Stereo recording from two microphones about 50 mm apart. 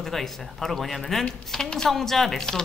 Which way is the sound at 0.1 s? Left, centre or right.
Centre.